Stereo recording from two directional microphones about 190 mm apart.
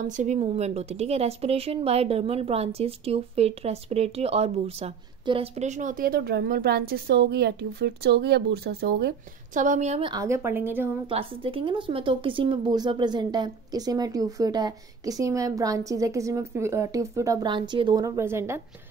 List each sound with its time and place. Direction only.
0.0 s a woman's voice: 40° right (ahead or behind); by 9.1 s 55° right (ahead or behind)
9.5 s a woman's voice: 40° right (ahead or behind); by 10.9 s 10° right (ahead or behind)
11.1 s a woman's voice: 30° right (ahead or behind); by 18.6 s 15° right (ahead or behind)